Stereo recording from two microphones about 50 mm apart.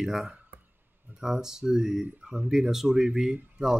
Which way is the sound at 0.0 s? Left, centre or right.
Centre.